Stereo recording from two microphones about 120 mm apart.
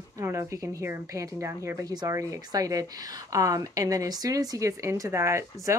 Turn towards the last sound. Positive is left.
turn(degrees=-25)  # may be behind; listen again after turning